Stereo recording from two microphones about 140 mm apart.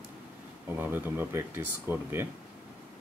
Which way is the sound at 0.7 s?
15° right (ahead or behind).